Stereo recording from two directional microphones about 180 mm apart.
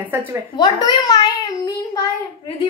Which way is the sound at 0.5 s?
20° left (ahead or behind).